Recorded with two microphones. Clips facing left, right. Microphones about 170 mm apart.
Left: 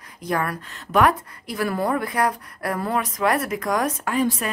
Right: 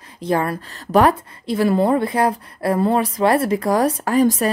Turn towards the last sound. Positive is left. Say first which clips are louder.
# right 6 dB
turn(degrees=-40)  # may be behind; listen again after turning